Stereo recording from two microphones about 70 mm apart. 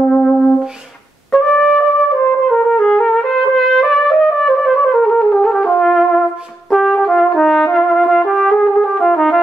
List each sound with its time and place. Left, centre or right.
0.0 s music: centre
1.3 s brass instrument: centre
2.5 s trumpet: centre
6.7 s brass instrument: centre